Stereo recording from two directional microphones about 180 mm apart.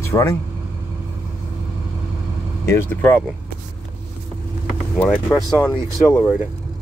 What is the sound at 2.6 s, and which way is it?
Speech, 15° left (ahead or behind).